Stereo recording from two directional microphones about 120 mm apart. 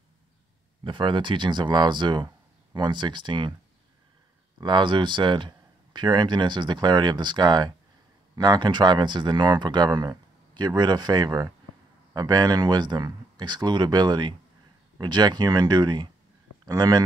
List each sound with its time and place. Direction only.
0.8 s speech: 40° right (ahead or behind)
4.6 s speech: 40° right (ahead or behind)